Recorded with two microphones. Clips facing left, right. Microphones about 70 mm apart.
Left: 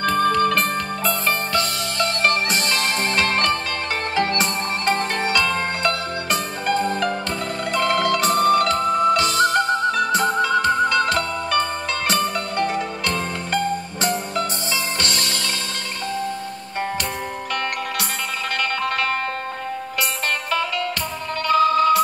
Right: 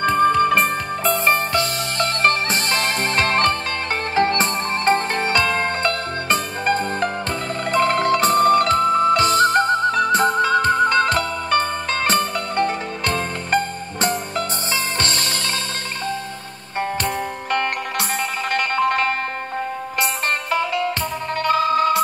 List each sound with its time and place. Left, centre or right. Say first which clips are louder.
0.1 s music: right 2 dB; centre
1.2 s music: right 3 dB; right
15.0 s music: right 1 dB; right
18.5 s music: right 5 dB; right